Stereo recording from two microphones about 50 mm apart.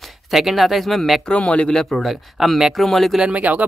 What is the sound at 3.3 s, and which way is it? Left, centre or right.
Speech, right.